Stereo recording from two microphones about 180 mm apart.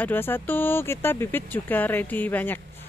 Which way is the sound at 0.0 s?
10° left (ahead or behind).